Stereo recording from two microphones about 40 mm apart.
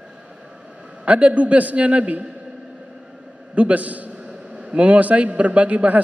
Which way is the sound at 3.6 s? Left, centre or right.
Right.